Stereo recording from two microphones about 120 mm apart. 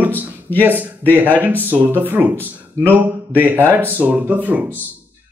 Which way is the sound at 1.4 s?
15° right (ahead or behind).